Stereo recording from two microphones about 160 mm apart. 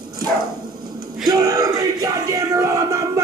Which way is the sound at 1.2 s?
25° right (ahead or behind).